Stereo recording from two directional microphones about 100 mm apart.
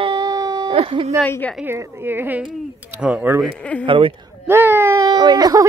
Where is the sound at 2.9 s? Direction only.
10° right (ahead or behind).